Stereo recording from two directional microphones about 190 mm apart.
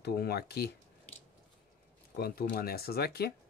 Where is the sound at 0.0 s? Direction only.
55° left (ahead or behind).